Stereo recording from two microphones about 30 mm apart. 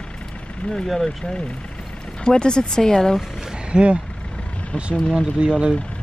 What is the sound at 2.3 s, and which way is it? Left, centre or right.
Speech, left.